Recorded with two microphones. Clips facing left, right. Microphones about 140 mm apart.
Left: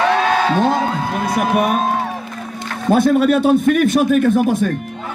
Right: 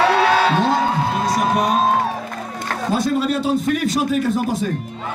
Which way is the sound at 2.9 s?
55° left (ahead or behind).